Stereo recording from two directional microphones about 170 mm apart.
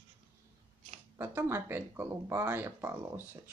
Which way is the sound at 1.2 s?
15° right (ahead or behind).